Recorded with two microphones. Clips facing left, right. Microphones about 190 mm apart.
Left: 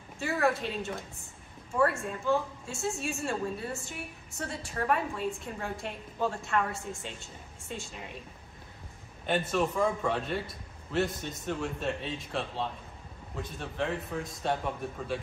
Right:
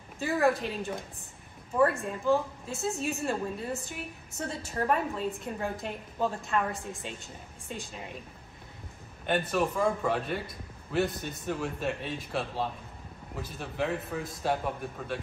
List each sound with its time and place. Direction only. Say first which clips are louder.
0.2 s a woman's voice: right 2 dB; 15° right (ahead or behind)
9.2 s a man's voice: right 1 dB; centre (ahead or behind)